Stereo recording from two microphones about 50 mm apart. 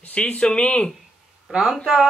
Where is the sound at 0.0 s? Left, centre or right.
Left.